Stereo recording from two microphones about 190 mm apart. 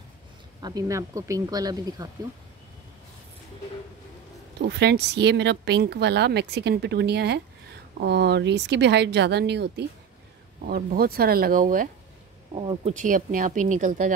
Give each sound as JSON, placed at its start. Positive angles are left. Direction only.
{"t": 0.6, "sound": "speech", "side_deg": -20}
{"t": 4.6, "sound": "speech", "side_deg": -60}
{"t": 12.5, "sound": "speech", "side_deg": -30}
{"t": 12.9, "sound": "speech", "side_deg": -45}